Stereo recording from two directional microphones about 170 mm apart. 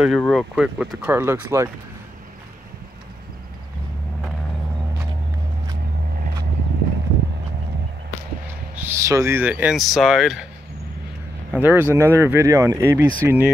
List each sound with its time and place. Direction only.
0.0 s speech: centre (ahead or behind); by 1.7 s 15° right (ahead or behind)
8.7 s speech: 15° right (ahead or behind)
11.5 s speech: 10° right (ahead or behind)